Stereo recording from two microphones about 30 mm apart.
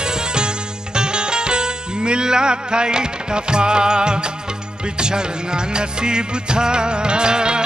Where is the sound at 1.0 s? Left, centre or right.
Right.